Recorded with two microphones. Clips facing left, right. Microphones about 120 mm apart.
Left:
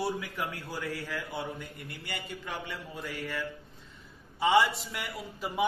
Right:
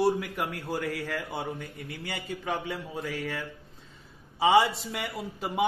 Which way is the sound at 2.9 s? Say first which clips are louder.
Right 1 dB; 70° right (ahead or behind).